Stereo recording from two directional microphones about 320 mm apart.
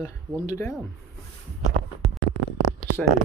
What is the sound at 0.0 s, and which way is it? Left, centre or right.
Speech, centre.